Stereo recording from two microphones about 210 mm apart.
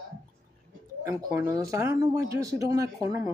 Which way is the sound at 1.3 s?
15° right (ahead or behind).